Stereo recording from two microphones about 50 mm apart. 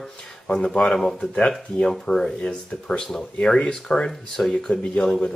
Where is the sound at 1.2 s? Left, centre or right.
Centre.